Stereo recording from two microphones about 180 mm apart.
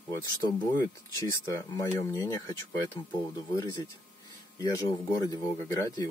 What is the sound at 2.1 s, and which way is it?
Speech, 20° left (ahead or behind).